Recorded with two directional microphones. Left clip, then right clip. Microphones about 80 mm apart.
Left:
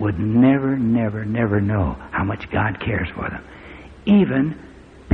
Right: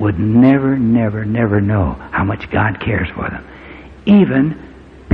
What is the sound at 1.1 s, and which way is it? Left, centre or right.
Speech, left.